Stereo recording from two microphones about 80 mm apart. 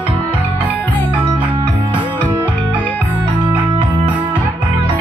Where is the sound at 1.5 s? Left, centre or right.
Right.